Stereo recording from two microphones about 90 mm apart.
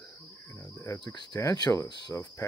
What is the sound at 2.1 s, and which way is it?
Speech, 35° left (ahead or behind).